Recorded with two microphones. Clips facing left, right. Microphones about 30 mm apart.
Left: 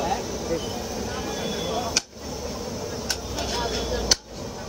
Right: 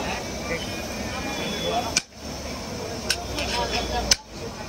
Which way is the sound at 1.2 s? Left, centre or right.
Right.